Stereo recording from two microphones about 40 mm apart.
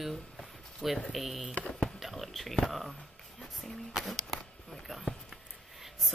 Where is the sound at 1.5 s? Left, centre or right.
Left.